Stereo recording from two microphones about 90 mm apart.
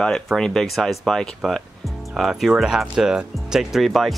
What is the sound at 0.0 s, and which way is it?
Speech, 5° left (ahead or behind).